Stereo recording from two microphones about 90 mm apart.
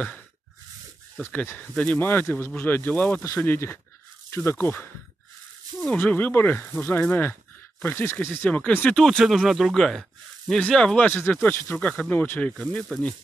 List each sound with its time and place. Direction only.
1.2 s speech: 20° left (ahead or behind)
8.9 s speech: 5° left (ahead or behind)
11.1 s speech: 20° left (ahead or behind)